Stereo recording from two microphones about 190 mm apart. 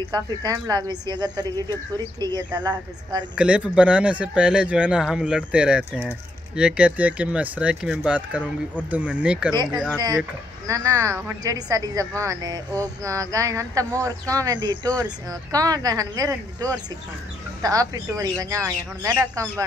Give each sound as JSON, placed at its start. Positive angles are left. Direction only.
{"t": 0.0, "sound": "speech", "side_deg": -20}
{"t": 3.3, "sound": "speech", "side_deg": -5}
{"t": 9.9, "sound": "a woman's voice", "side_deg": -20}